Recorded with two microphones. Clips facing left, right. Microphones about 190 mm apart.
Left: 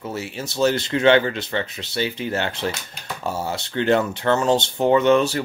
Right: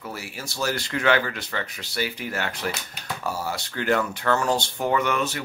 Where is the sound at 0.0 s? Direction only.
25° left (ahead or behind).